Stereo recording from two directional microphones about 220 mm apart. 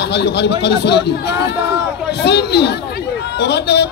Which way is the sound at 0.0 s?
50° left (ahead or behind).